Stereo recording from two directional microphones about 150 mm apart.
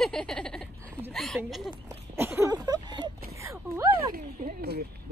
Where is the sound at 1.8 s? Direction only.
20° right (ahead or behind).